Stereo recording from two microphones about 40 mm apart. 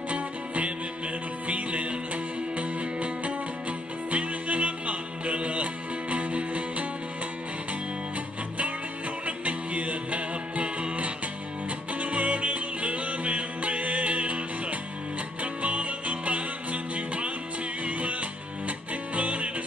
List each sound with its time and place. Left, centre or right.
0.1 s music: right
9.2 s music: right
19.1 s music: right